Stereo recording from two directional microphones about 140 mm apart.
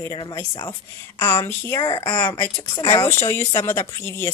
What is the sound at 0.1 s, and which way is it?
Speech, 30° left (ahead or behind).